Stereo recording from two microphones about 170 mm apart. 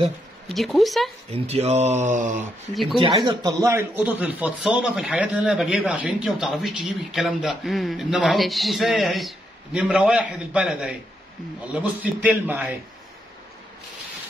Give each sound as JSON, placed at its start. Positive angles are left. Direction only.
{"t": 0.5, "sound": "a man's voice", "side_deg": 0}
{"t": 1.3, "sound": "speech", "side_deg": -40}
{"t": 2.7, "sound": "a man's voice", "side_deg": 0}
{"t": 3.0, "sound": "a man's voice", "side_deg": -25}